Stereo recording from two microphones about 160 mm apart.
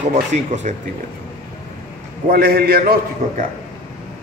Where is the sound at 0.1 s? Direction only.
45° right (ahead or behind).